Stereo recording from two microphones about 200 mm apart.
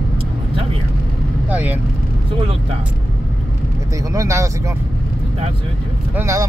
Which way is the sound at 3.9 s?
15° right (ahead or behind).